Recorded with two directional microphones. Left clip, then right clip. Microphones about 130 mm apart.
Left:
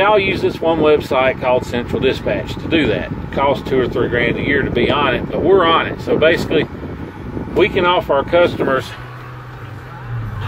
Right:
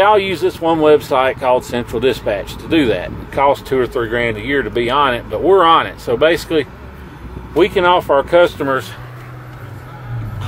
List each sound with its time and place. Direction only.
0.0 s speech: 45° right (ahead or behind)
4.5 s speech: 40° right (ahead or behind)